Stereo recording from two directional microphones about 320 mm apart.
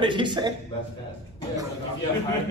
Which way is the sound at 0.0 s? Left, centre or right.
Centre.